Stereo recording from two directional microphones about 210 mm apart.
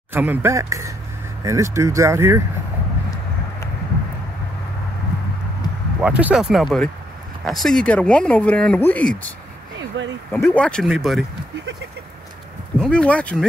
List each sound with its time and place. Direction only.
0.1 s speech: 10° right (ahead or behind)
5.9 s speech: 5° right (ahead or behind)
9.8 s a sound: 60° right (ahead or behind)
10.3 s speech: 10° left (ahead or behind)
12.8 s speech: 5° left (ahead or behind)